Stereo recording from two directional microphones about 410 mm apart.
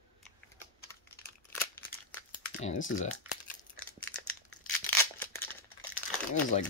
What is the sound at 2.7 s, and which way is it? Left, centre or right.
Speech, centre.